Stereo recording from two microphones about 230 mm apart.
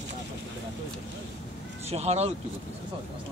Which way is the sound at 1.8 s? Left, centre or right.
Right.